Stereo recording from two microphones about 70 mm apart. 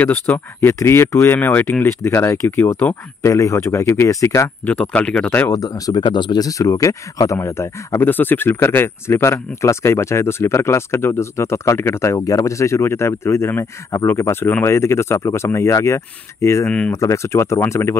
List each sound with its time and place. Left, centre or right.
0.3 s speech: left
0.7 s speech: left
3.2 s speech: left
4.6 s speech: centre
5.5 s speech: left
6.6 s speech: left
16.6 s speech: centre
16.9 s speech: left